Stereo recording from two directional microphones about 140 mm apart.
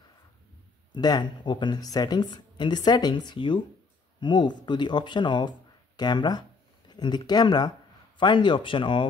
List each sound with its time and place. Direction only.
0.9 s speech: 30° left (ahead or behind)